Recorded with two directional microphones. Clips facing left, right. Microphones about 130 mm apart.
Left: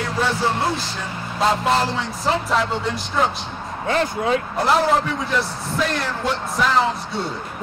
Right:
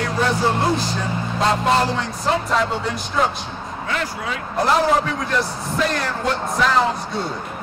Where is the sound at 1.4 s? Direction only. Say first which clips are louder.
Even; centre (ahead or behind).